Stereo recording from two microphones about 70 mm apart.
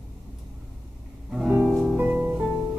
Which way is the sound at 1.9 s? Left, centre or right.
Right.